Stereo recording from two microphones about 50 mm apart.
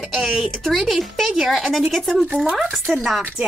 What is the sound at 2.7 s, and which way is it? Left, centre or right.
Speech, centre.